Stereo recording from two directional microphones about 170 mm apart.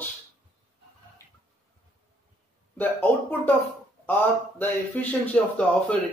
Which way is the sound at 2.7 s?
10° left (ahead or behind).